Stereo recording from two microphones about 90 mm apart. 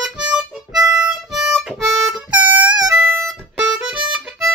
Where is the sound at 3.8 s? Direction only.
10° right (ahead or behind).